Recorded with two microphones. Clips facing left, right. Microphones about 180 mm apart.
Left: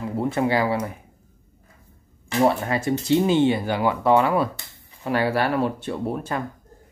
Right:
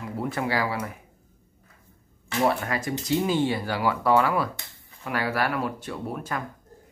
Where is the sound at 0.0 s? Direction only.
25° left (ahead or behind).